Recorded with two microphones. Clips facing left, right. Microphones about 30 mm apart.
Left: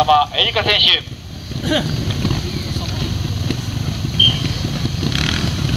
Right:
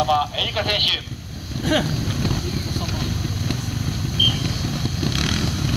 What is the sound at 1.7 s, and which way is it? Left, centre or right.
Speech, centre.